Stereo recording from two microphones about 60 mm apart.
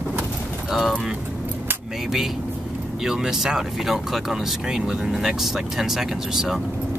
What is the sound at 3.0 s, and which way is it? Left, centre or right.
Speech, centre.